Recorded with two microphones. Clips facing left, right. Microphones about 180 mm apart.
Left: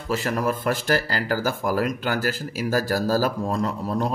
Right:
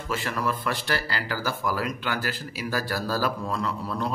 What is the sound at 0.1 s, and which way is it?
Speech, 40° left (ahead or behind).